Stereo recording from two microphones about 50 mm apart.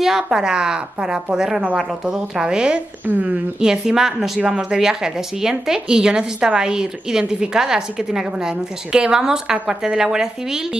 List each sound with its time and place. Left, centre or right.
0.0 s a woman's voice: centre
3.1 s speech: right
3.5 s a woman's voice: centre